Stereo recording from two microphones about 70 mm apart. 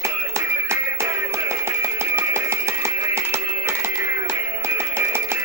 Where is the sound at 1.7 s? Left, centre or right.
Right.